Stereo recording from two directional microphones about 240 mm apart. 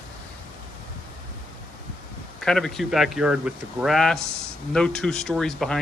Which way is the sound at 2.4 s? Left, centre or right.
Centre.